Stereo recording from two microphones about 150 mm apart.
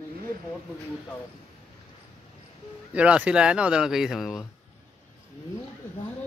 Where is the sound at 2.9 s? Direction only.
10° right (ahead or behind).